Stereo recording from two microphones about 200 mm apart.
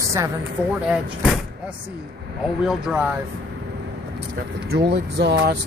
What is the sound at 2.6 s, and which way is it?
Speech, 5° right (ahead or behind).